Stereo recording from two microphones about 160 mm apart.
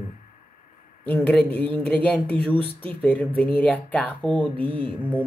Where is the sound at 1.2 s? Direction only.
10° left (ahead or behind).